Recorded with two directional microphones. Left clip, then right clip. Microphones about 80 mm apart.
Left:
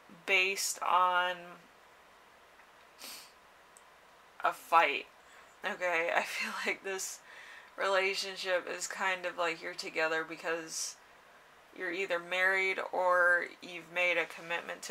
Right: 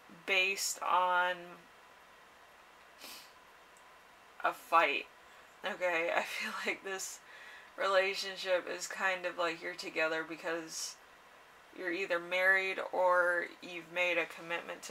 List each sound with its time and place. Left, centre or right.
0.2 s speech: left
4.4 s speech: left
11.8 s speech: left